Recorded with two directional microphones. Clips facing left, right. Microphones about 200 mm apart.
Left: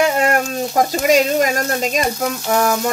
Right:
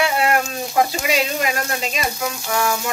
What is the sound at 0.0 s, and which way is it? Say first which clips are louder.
Speech: left 3 dB; 45° left (ahead or behind).